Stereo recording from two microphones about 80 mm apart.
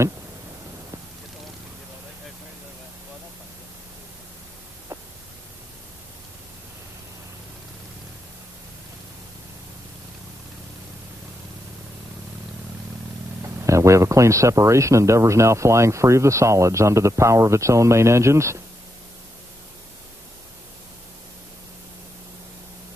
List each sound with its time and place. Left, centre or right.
13.4 s speech: right